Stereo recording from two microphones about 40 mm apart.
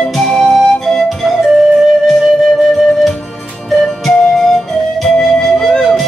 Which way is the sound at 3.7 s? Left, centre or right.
Centre.